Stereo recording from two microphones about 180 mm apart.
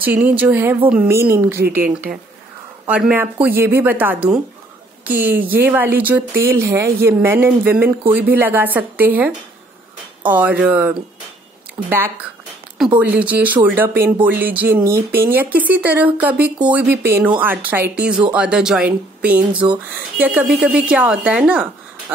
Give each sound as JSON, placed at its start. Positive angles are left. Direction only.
{"t": 0.0, "sound": "speech", "side_deg": -10}
{"t": 10.3, "sound": "speech", "side_deg": -10}
{"t": 13.0, "sound": "speech", "side_deg": -10}
{"t": 19.5, "sound": "speech", "side_deg": -25}
{"t": 20.2, "sound": "speech", "side_deg": -10}